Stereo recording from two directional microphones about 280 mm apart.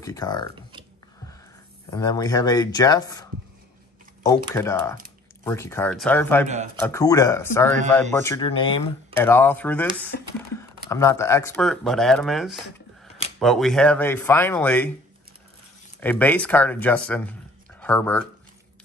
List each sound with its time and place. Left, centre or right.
0.0 s speech: centre
1.9 s speech: centre
4.5 s speech: centre
16.0 s speech: centre